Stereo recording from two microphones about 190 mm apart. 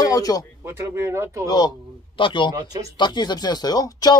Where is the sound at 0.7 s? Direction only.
15° right (ahead or behind).